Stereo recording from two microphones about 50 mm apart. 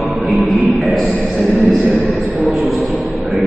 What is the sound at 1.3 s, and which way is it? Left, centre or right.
Speech, centre.